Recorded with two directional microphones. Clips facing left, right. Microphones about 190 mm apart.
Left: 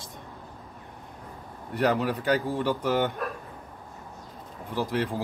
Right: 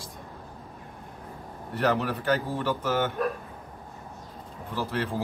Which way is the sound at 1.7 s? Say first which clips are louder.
Left 1 dB; 15° left (ahead or behind).